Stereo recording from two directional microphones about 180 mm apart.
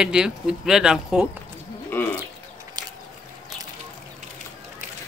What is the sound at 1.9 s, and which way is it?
Bird, 10° left (ahead or behind).